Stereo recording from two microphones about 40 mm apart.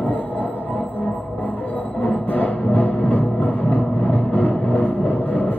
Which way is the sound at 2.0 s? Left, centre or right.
Left.